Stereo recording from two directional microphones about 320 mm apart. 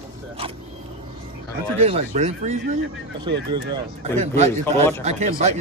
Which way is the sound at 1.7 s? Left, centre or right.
Centre.